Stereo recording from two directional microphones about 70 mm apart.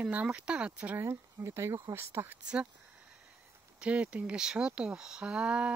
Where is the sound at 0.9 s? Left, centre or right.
Right.